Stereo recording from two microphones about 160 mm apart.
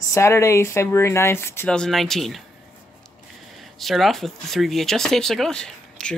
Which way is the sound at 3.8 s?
Centre (ahead or behind).